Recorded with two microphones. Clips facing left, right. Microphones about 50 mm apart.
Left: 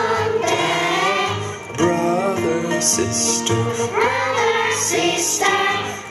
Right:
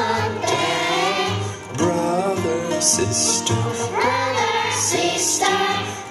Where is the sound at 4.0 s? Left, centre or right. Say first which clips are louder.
Left 1 dB; left.